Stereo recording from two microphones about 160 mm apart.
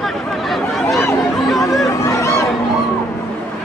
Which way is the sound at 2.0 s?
15° left (ahead or behind).